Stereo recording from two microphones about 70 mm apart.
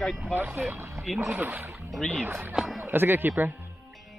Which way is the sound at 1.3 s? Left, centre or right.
Right.